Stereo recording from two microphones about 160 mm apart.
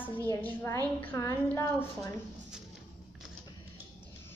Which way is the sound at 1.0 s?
15° left (ahead or behind).